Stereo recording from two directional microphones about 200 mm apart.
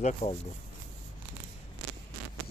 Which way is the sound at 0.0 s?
25° left (ahead or behind).